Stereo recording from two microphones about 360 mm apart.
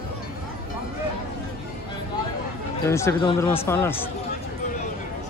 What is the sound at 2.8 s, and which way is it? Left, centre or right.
Speech, centre.